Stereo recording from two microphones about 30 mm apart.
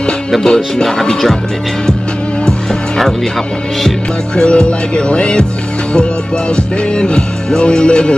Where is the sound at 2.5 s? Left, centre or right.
Centre.